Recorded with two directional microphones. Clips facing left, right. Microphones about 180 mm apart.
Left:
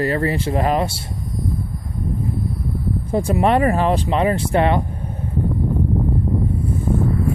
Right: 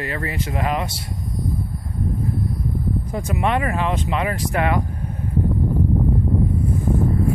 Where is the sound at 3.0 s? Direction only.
30° left (ahead or behind).